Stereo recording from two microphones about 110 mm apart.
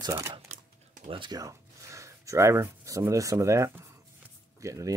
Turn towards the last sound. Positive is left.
turn(degrees=-30)  # may be behind; listen again after turning